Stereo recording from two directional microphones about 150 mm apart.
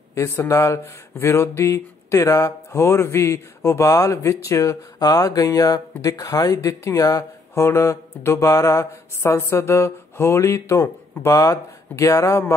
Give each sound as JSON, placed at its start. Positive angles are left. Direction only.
{"t": 0.1, "sound": "speech", "side_deg": 20}